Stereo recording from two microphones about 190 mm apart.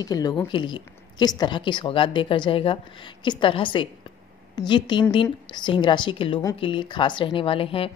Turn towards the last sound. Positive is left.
turn(degrees=30)  # may be behind; listen again after turning